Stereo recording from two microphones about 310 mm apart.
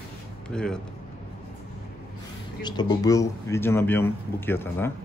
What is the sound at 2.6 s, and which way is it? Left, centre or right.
Speech, centre.